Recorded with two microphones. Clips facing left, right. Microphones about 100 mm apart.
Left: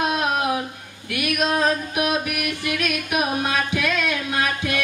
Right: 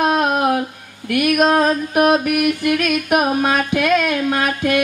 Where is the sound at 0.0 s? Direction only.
45° right (ahead or behind).